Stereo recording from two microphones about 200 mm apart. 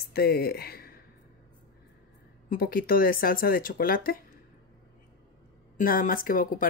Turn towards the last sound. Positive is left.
turn(degrees=45)  # may be behind; listen again after turning